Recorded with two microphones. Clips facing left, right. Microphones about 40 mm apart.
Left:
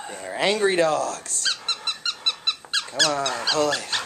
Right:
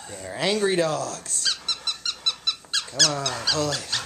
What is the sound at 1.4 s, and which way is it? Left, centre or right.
Squeak, centre.